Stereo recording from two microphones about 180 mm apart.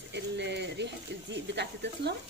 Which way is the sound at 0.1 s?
70° right (ahead or behind).